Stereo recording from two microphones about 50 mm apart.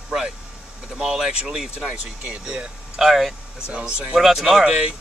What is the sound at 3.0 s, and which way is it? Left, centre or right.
Speech, centre.